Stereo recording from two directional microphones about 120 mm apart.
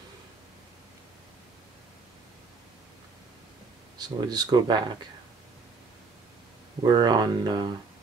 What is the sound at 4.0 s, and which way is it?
Speech, 35° right (ahead or behind).